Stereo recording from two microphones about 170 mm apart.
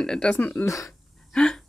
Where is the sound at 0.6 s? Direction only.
20° left (ahead or behind).